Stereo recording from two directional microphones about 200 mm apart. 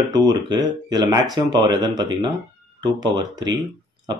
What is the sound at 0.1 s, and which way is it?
Speech, 20° right (ahead or behind).